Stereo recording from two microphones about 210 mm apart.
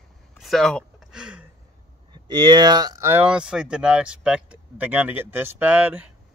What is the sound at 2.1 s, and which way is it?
Speech, 20° right (ahead or behind).